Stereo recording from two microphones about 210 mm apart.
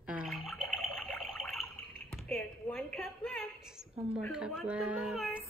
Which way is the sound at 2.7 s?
Centre (ahead or behind).